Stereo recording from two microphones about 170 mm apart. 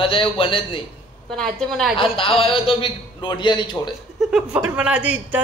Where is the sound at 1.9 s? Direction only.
30° left (ahead or behind).